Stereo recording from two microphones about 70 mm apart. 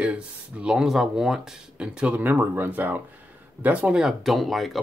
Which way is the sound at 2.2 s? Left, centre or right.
Right.